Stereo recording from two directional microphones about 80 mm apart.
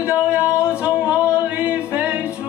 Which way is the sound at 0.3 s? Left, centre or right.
Centre.